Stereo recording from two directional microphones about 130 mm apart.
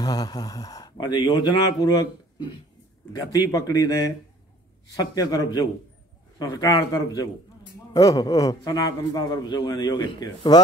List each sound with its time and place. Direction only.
0.0 s a man's voice: 30° left (ahead or behind)